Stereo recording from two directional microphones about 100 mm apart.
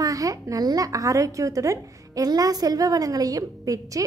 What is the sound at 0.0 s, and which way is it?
A woman's voice, 35° right (ahead or behind).